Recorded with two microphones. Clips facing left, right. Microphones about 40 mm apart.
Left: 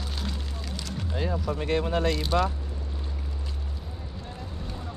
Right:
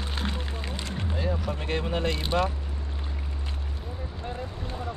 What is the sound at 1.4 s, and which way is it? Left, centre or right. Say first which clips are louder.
Speech: left 3 dB; right.